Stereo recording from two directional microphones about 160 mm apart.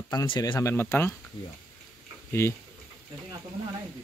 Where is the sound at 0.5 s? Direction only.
15° left (ahead or behind).